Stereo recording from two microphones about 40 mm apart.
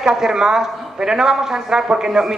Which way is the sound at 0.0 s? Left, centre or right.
Centre.